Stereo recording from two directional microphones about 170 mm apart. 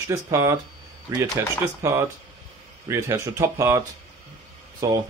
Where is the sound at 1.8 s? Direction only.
15° right (ahead or behind).